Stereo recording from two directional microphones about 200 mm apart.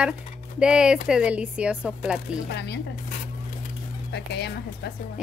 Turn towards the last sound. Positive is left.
turn(degrees=55)  # may be behind; listen again after turning